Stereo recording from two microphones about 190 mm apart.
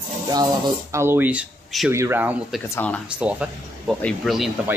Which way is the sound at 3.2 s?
5° right (ahead or behind).